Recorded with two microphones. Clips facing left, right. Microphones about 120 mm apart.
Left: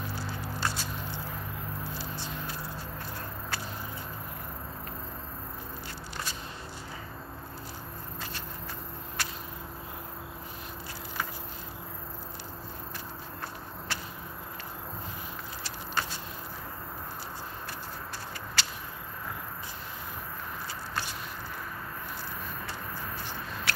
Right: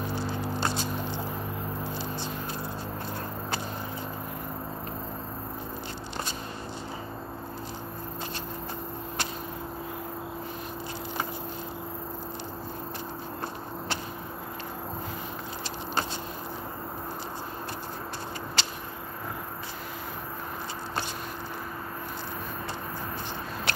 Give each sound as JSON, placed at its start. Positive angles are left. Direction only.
{"t": 0.0, "sound": "a sound", "side_deg": -20}
{"t": 2.0, "sound": "vehicle", "side_deg": -20}
{"t": 18.6, "sound": "vehicle", "side_deg": -20}